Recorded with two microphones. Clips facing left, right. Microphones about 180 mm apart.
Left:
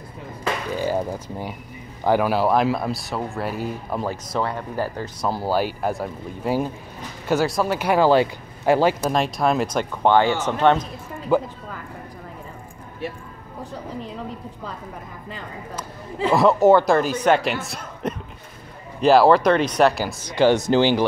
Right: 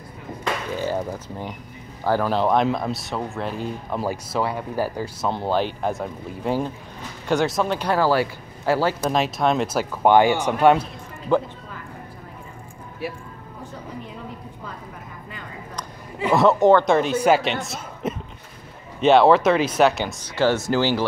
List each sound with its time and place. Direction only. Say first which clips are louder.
0.4 s a sound: left 1 dB; 10° left (ahead or behind)
2.0 s speech: left 2 dB; 10° left (ahead or behind)
4.0 s speech: right 2 dB; 10° right (ahead or behind)
5.3 s speech: left 1 dB; 5° left (ahead or behind)
9.0 s speech: even; centre (ahead or behind)
11.3 s speech: left 1 dB; 5° left (ahead or behind)
13.0 s speech: even; 5° right (ahead or behind)
16.3 s speech: even; centre (ahead or behind)
20.2 s speech: left 4 dB; 15° left (ahead or behind)